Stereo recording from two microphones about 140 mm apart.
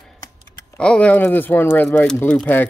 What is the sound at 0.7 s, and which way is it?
Speech, 10° left (ahead or behind).